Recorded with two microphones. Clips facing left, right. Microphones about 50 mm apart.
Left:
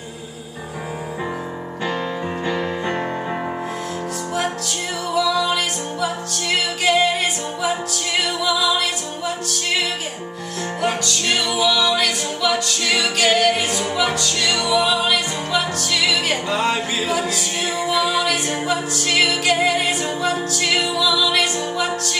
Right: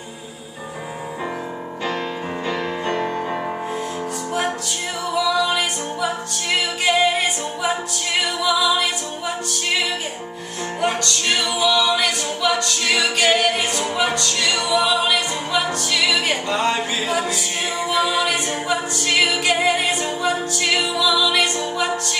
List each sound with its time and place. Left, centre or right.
2.4 s music: centre
5.1 s music: centre